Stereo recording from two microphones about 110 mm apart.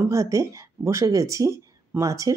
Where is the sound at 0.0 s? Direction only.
30° right (ahead or behind).